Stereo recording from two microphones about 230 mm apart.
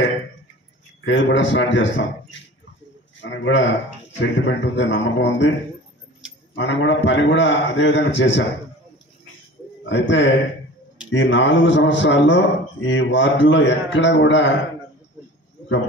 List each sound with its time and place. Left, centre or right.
1.0 s a man's voice: left
6.5 s a man's voice: left
9.8 s a man's voice: left